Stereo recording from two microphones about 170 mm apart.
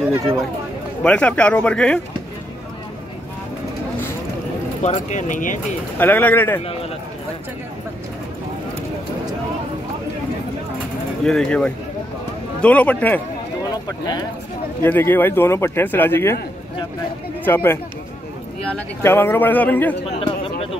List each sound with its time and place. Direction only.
1.0 s speech: 5° left (ahead or behind)
4.8 s speech: 45° left (ahead or behind)
5.9 s speech: 10° left (ahead or behind)
11.2 s speech: 5° left (ahead or behind)
13.7 s speech: 25° left (ahead or behind)
14.8 s speech: 10° left (ahead or behind)
17.5 s speech: 10° left (ahead or behind)
19.0 s speech: 15° left (ahead or behind)
20.1 s a sound: 35° left (ahead or behind)